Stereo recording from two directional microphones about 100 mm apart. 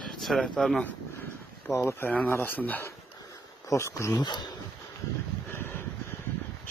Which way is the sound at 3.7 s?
30° left (ahead or behind).